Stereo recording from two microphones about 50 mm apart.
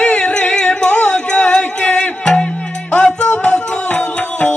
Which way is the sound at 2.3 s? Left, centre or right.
Centre.